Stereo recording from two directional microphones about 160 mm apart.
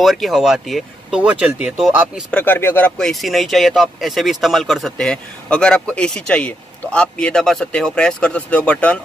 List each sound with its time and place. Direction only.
0.0 s speech: centre (ahead or behind)
2.3 s speech: 10° left (ahead or behind)